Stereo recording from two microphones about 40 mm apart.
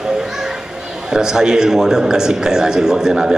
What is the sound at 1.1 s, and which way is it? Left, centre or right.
A man's voice, centre.